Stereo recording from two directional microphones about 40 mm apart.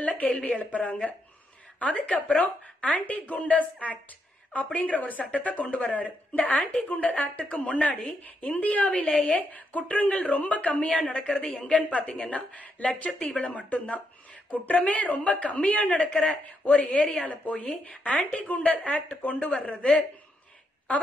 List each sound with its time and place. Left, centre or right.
0.0 s a sound: left
0.6 s a woman's voice: left
5.9 s a woman's voice: left